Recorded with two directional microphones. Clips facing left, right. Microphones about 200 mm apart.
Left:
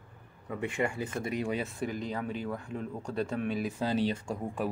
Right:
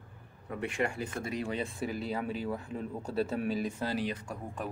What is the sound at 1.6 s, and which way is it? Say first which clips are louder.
Speech: even; 5° right (ahead or behind).